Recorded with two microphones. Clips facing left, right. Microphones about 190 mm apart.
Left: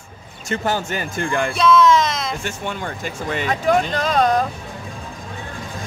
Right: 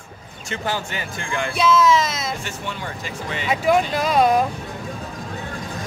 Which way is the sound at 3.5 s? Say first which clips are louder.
Right 1 dB; 10° right (ahead or behind).